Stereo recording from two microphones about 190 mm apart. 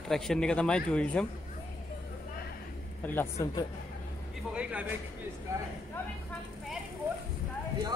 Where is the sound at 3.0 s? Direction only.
10° left (ahead or behind).